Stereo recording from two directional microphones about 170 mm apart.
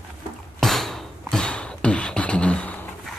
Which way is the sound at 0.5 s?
Centre (ahead or behind).